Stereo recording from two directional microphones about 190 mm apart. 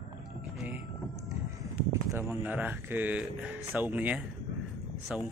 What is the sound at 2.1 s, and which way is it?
Speech, 10° right (ahead or behind).